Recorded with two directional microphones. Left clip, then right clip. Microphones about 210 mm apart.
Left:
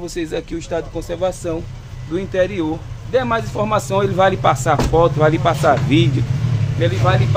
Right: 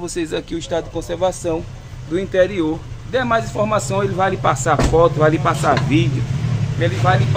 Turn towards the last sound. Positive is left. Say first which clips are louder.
# even
turn(degrees=10)  # may be behind; listen again after turning